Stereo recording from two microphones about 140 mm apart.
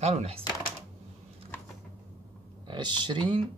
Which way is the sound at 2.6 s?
30° right (ahead or behind).